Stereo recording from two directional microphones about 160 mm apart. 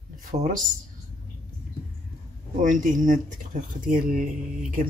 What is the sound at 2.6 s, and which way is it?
Speech, 55° right (ahead or behind).